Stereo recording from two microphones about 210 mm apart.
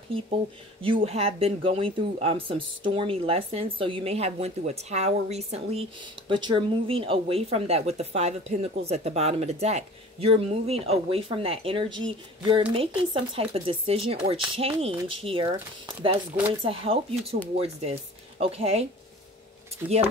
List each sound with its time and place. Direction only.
0.8 s speech: 25° right (ahead or behind)
16.6 s speech: 25° right (ahead or behind)